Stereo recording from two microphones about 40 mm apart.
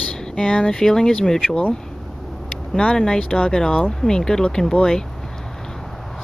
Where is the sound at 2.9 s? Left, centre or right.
Centre.